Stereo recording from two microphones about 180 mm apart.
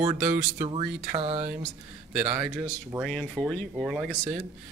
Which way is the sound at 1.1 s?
35° right (ahead or behind).